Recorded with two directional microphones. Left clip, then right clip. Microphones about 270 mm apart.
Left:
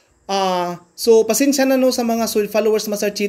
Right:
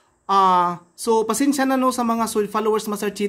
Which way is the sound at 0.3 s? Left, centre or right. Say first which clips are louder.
Right 3 dB; centre.